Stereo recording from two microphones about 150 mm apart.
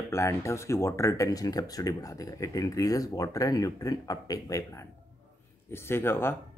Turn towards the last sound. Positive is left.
turn(degrees=15)  # may be behind; listen again after turning